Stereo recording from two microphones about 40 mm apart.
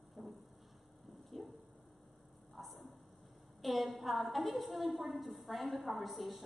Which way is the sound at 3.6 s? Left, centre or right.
Centre.